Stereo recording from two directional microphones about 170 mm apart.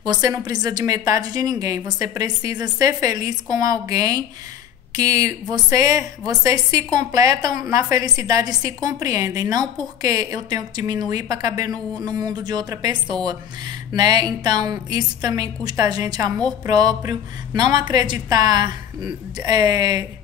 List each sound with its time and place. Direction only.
0.0 s a woman's voice: 25° right (ahead or behind)